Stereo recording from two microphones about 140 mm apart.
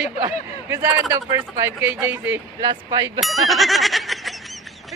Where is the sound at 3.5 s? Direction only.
Centre (ahead or behind).